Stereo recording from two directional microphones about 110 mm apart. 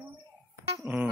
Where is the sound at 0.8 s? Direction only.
15° right (ahead or behind).